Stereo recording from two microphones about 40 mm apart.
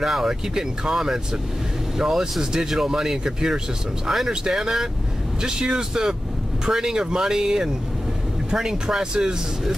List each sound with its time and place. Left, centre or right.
0.0 s speech: centre